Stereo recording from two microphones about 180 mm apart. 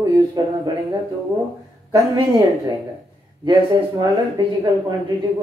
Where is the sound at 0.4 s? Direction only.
20° right (ahead or behind).